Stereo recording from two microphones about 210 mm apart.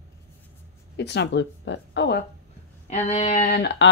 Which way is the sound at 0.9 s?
55° left (ahead or behind).